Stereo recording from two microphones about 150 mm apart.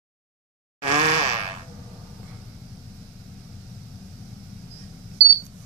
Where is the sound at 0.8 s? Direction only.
45° right (ahead or behind).